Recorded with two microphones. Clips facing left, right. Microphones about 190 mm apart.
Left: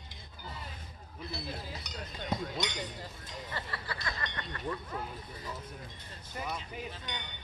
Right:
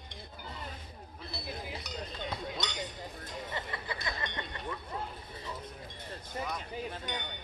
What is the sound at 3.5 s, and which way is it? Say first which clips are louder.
Speech: even; 20° right (ahead or behind).